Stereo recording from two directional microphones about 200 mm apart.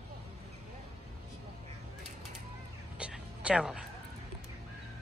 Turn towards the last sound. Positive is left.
turn(degrees=0)  # may be behind; listen again after turning